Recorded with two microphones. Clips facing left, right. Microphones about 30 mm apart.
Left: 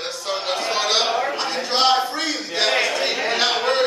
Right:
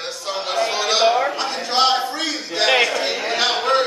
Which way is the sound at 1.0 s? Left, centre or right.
Centre.